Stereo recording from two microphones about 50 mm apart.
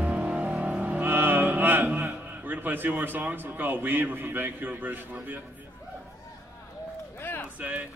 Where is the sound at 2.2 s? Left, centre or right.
Right.